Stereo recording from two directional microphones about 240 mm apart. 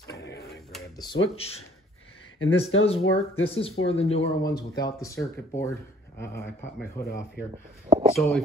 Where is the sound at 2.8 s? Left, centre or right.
Left.